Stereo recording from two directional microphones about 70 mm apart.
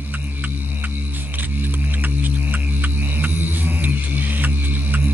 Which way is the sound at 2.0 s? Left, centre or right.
Right.